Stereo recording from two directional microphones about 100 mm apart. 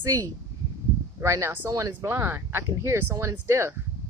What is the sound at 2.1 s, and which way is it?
A woman's voice, 25° right (ahead or behind).